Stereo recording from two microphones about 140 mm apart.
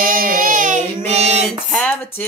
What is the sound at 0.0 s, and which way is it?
Child singing, 80° right.